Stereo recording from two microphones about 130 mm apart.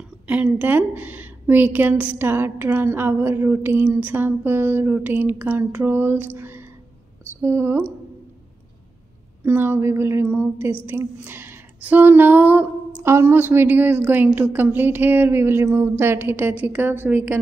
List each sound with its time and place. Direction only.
0.3 s a woman's voice: 10° right (ahead or behind)
9.4 s a woman's voice: 15° right (ahead or behind)